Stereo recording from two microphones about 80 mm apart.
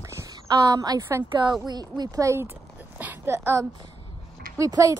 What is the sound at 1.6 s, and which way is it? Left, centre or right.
Speech, right.